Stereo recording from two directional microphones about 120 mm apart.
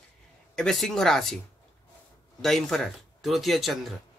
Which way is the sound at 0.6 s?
5° left (ahead or behind).